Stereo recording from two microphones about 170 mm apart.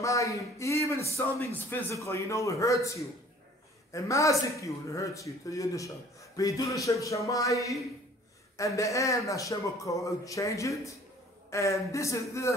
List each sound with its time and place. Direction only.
0.0 s a man's voice: 20° left (ahead or behind)